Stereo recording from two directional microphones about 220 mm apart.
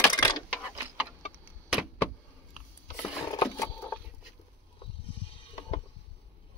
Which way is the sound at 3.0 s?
15° left (ahead or behind).